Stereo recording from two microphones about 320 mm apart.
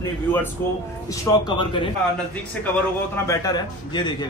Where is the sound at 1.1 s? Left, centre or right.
Centre.